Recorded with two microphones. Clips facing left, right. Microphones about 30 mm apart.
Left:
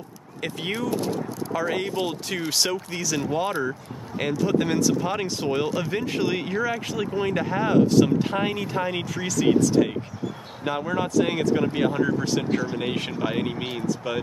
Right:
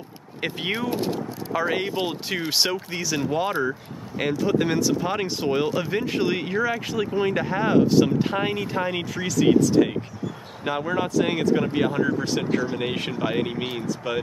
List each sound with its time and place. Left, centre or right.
0.4 s speech: right; by 14.2 s centre